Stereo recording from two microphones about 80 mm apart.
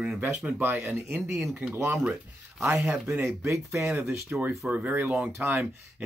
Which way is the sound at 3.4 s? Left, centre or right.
Right.